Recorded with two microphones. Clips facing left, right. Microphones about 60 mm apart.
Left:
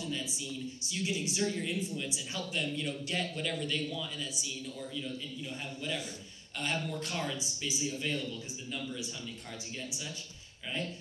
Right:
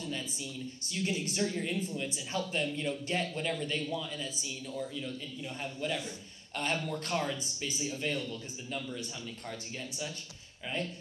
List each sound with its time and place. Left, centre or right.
0.0 s speech: right
5.6 s a man's voice: right